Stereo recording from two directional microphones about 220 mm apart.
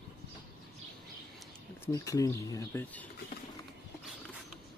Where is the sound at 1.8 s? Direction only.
15° left (ahead or behind).